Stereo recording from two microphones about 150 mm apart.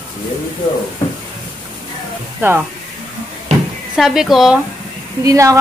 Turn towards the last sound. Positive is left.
turn(degrees=-20)  # may be behind; listen again after turning